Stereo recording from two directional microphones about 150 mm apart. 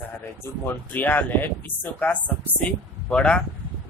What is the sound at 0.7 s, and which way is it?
Speech, 10° left (ahead or behind).